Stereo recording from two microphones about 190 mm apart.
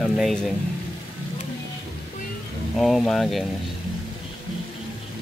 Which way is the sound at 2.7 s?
Centre (ahead or behind).